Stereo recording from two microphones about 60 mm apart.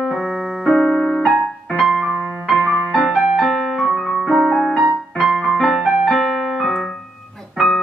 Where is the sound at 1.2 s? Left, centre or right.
Centre.